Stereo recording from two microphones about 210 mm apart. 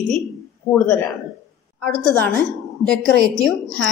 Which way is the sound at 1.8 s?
5° left (ahead or behind).